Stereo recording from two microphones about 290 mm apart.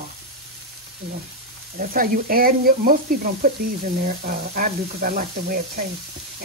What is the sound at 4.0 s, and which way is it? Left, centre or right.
Sizzle, right.